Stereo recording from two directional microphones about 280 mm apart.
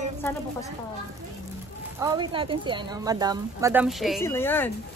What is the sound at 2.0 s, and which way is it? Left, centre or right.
Speech, centre.